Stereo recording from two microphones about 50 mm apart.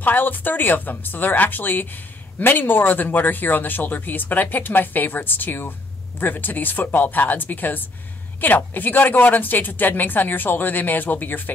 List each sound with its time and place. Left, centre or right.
0.0 s speech: left